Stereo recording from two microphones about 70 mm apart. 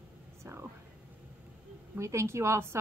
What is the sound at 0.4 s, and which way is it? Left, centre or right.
Whispering, right.